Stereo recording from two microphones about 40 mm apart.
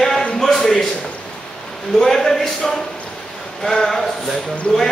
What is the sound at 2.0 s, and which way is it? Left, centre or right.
Speech, centre.